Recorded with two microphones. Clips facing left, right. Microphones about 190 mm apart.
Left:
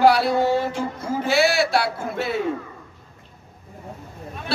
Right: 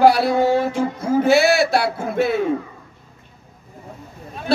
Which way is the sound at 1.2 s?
50° right (ahead or behind).